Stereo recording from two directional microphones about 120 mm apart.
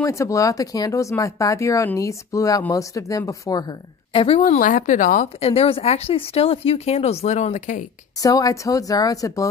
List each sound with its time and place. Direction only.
0.0 s speech: 25° left (ahead or behind)
4.1 s a woman's voice: 50° left (ahead or behind)
4.4 s speech: 90° left
5.5 s speech: 55° left (ahead or behind); by 7.8 s 85° left
8.2 s speech: 30° left (ahead or behind)